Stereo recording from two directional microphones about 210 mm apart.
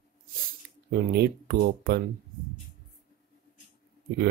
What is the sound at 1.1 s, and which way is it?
Speech, 50° right (ahead or behind).